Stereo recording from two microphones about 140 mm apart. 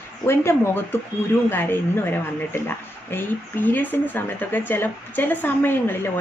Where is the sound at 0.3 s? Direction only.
20° left (ahead or behind).